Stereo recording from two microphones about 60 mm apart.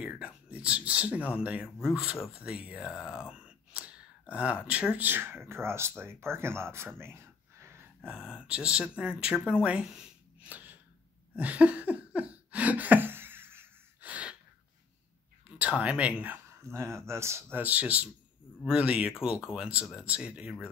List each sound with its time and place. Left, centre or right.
0.0 s speech: centre; by 7.1 s right
8.0 s speech: centre
10.4 s a sound: right
14.0 s gasp: right
15.8 s speech: right
16.7 s speech: right
17.6 s speech: right